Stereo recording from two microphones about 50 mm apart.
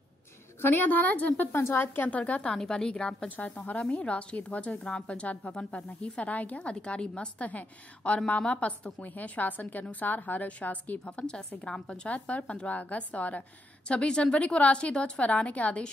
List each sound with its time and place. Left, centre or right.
0.6 s a woman's voice: left
1.5 s a woman's voice: left
2.0 s a woman's voice: left
2.5 s a woman's voice: centre
3.3 s a woman's voice: left
6.3 s a woman's voice: left
11.2 s a woman's voice: centre